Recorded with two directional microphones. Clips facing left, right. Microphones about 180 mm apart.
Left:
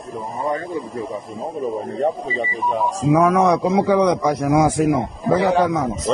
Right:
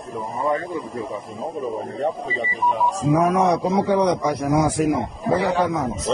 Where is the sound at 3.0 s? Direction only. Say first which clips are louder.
Left 3 dB; 90° left.